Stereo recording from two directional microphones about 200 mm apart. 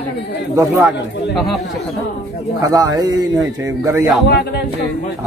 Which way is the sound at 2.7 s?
20° right (ahead or behind).